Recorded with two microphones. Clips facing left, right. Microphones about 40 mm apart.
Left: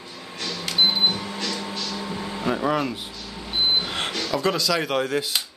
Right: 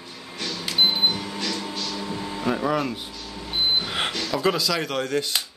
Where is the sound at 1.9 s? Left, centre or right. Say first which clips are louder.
Even; centre.